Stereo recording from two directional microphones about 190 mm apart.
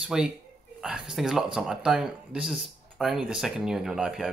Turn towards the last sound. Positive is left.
turn(degrees=0)  # may be behind; listen again after turning